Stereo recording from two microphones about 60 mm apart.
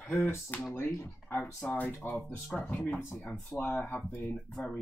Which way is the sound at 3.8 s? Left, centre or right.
Left.